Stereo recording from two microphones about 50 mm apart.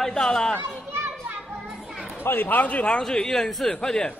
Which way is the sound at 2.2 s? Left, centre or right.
Left.